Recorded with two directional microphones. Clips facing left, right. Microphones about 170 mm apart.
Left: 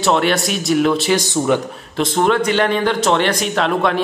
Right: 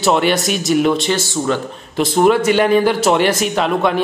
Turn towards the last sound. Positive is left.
turn(degrees=-5)  # may be behind; listen again after turning